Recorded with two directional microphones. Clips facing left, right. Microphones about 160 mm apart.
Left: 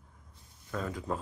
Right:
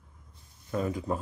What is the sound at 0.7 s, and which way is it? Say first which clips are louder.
Speech: right 5 dB; 15° right (ahead or behind).